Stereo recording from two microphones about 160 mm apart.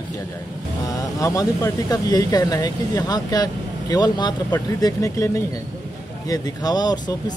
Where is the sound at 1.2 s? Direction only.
20° left (ahead or behind).